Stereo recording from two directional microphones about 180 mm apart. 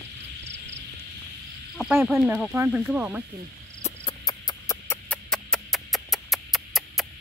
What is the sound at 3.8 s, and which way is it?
Cricket, 30° left (ahead or behind).